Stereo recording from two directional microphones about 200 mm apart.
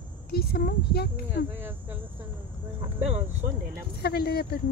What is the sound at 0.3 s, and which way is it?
Speech, 50° left (ahead or behind).